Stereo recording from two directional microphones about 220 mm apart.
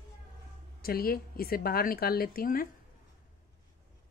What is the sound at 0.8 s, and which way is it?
Speech, 45° left (ahead or behind).